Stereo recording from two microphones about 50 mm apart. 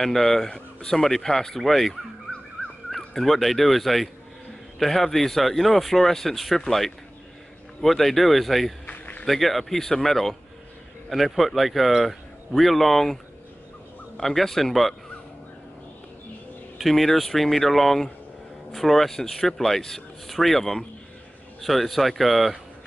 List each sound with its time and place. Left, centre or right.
0.0 s speech: centre
3.2 s speech: centre
8.8 s a sound: left
9.2 s speech: centre
16.7 s speech: centre